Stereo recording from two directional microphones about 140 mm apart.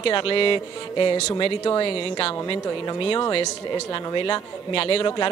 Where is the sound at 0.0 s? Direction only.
40° left (ahead or behind).